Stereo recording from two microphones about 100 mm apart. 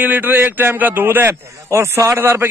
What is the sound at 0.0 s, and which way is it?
A man's voice, 20° right (ahead or behind).